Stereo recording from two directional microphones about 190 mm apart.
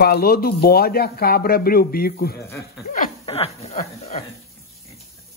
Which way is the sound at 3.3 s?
35° left (ahead or behind).